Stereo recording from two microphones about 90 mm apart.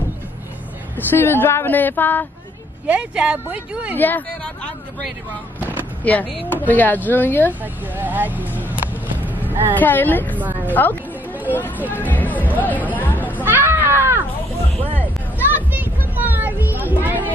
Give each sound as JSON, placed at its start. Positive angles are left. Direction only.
{"t": 0.9, "sound": "speech", "side_deg": 25}
{"t": 2.9, "sound": "speech", "side_deg": -15}
{"t": 3.9, "sound": "speech", "side_deg": 20}
{"t": 5.6, "sound": "a sound", "side_deg": -20}
{"t": 6.0, "sound": "speech", "side_deg": 15}
{"t": 7.6, "sound": "speech", "side_deg": -20}
{"t": 9.2, "sound": "a sound", "side_deg": -20}
{"t": 9.8, "sound": "a woman's voice", "side_deg": 20}
{"t": 12.9, "sound": "hubbub", "side_deg": 20}
{"t": 13.4, "sound": "a sound", "side_deg": -25}
{"t": 15.5, "sound": "children playing", "side_deg": -20}